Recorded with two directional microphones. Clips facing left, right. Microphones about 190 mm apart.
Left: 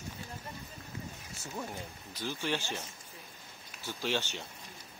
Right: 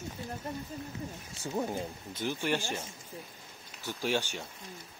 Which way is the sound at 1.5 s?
30° right (ahead or behind).